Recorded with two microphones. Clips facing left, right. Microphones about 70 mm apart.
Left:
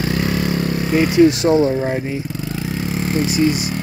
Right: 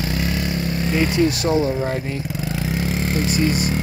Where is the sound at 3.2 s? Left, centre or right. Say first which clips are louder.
Left 2 dB; centre.